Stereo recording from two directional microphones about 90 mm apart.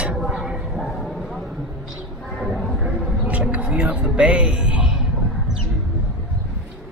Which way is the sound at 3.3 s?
15° right (ahead or behind).